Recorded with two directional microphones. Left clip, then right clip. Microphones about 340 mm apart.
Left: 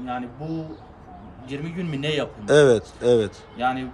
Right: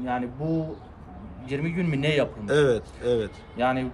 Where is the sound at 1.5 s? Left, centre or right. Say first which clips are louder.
Right 3 dB; centre.